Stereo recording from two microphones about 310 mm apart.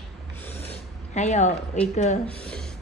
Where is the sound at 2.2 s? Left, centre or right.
Centre.